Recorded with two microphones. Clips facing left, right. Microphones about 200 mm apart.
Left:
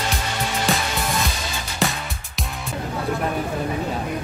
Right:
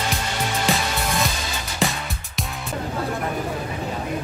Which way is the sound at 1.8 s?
Centre (ahead or behind).